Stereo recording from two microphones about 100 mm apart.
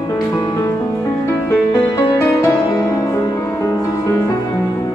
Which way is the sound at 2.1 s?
30° left (ahead or behind).